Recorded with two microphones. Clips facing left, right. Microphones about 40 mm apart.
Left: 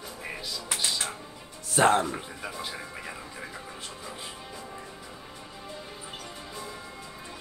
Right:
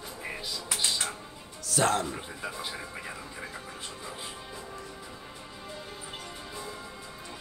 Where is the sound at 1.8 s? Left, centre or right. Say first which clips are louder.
Left 5 dB; left.